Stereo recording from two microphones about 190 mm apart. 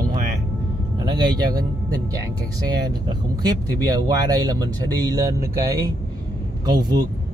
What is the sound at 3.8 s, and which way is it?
Speech, 20° right (ahead or behind).